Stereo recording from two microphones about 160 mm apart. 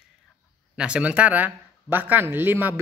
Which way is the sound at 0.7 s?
5° right (ahead or behind).